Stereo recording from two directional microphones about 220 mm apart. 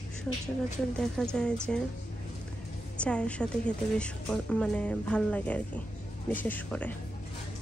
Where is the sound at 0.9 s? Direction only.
5° left (ahead or behind).